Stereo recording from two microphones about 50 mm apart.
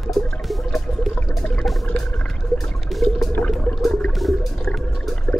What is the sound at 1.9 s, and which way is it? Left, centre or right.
Music, left.